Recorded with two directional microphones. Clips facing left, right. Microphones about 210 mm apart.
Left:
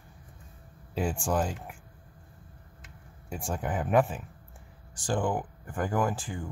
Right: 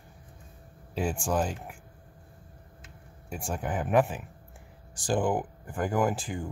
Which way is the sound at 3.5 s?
5° right (ahead or behind).